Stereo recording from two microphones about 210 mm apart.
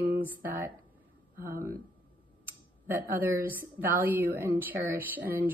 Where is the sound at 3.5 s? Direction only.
10° right (ahead or behind).